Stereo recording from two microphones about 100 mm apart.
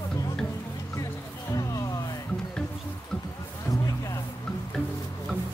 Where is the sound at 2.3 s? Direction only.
10° left (ahead or behind).